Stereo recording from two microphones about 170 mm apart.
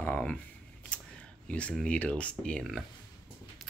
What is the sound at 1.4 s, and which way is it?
Speech, 5° left (ahead or behind).